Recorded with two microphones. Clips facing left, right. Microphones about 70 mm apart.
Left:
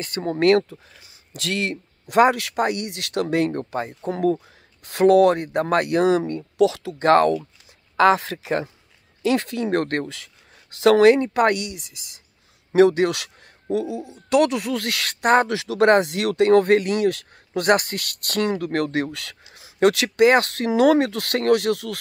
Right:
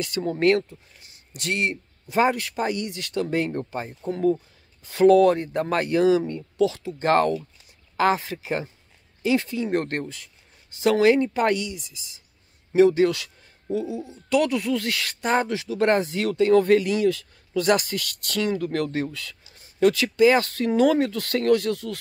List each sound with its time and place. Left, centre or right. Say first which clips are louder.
0.0 s speech: left 2 dB; left
8.0 s speech: left 5 dB; left
12.7 s speech: left 1 dB; left
15.5 s speech: left 5 dB; left